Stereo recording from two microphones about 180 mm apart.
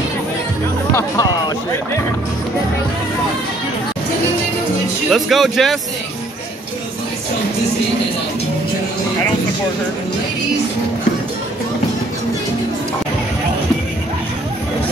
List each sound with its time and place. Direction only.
0.9 s speech: 20° left (ahead or behind)
5.1 s speech: centre (ahead or behind)